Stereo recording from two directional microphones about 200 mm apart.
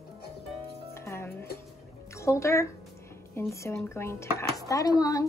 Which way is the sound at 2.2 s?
15° left (ahead or behind).